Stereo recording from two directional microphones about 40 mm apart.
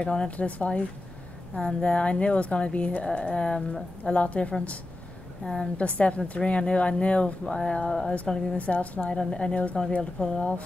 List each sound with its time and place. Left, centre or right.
0.0 s a woman's voice: left
0.4 s speech: left
1.6 s a woman's voice: left
3.2 s a woman's voice: left
5.4 s speech: centre
5.8 s speech: left
7.5 s speech: centre
8.5 s speech: left
9.1 s a woman's voice: centre